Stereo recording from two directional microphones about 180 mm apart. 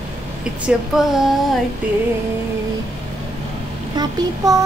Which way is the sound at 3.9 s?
20° right (ahead or behind).